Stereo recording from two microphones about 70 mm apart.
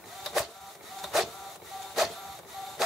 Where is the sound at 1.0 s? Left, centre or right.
Centre.